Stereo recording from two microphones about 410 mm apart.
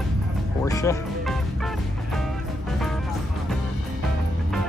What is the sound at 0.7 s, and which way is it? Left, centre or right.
Music, centre.